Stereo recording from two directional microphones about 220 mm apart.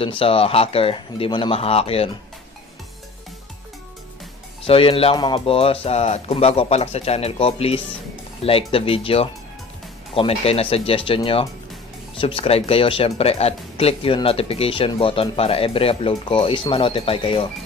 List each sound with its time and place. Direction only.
0.0 s speech: 25° left (ahead or behind)
4.6 s speech: 25° left (ahead or behind)